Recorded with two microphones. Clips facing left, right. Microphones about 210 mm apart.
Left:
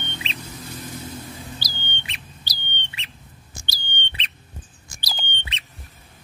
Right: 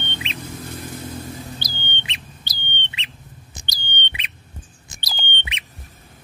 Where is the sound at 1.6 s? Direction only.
25° right (ahead or behind).